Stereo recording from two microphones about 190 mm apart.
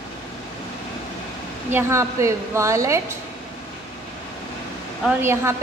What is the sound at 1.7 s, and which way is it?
A woman's voice, 15° right (ahead or behind).